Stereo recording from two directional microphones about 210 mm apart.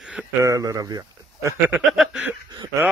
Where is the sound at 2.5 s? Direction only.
20° right (ahead or behind).